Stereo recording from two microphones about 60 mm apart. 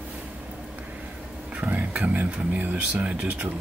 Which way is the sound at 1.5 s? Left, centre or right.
Right.